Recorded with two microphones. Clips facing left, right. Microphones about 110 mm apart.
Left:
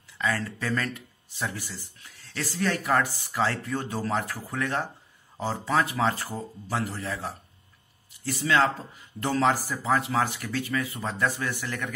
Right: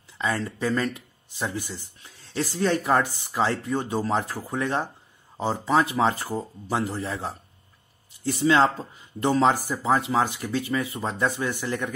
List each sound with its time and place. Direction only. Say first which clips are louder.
0.2 s speech: right 3 dB; 25° right (ahead or behind)